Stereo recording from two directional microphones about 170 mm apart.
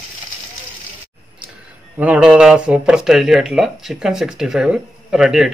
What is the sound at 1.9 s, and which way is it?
Speech, 10° right (ahead or behind).